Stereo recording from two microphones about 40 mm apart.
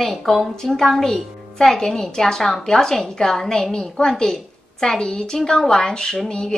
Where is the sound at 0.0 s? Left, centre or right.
Centre.